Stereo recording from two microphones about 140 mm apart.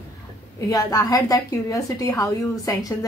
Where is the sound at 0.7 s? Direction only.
25° left (ahead or behind).